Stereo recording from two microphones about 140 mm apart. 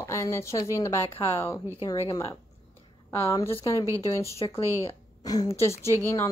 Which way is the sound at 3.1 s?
20° left (ahead or behind).